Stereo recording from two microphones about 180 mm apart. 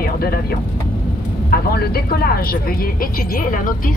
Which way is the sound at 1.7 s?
60° left (ahead or behind).